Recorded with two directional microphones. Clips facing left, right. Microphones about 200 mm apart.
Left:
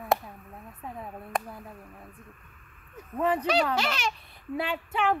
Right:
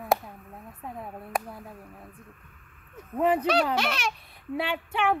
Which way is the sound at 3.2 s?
15° right (ahead or behind).